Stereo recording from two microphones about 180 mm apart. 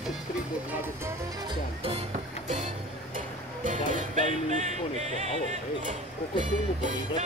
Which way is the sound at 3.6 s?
45° right (ahead or behind).